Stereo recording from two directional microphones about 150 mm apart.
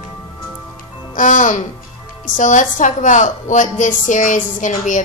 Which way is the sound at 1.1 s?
60° left (ahead or behind).